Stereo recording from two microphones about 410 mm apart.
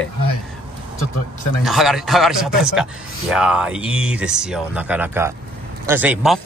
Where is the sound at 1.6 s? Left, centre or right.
Centre.